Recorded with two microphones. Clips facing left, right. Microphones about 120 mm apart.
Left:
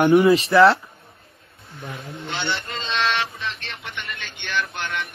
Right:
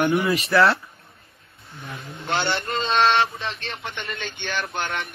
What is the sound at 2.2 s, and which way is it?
Speech, 60° right (ahead or behind).